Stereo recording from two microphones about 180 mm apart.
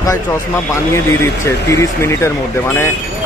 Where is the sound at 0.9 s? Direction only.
15° left (ahead or behind).